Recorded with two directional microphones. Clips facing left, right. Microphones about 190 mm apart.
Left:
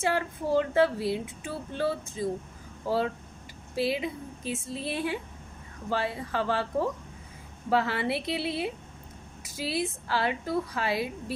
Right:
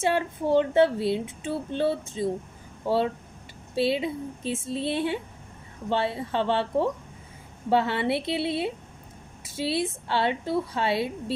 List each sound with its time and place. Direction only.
0.0 s speech: 25° right (ahead or behind)
2.8 s speech: 65° right (ahead or behind)
3.7 s speech: 25° right (ahead or behind)